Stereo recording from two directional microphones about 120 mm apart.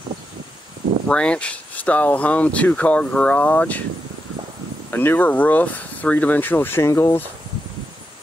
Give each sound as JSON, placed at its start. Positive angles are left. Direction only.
{"t": 1.0, "sound": "speech", "side_deg": 10}
{"t": 4.9, "sound": "speech", "side_deg": 15}